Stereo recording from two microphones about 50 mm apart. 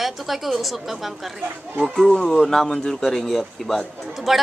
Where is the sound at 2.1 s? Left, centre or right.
Centre.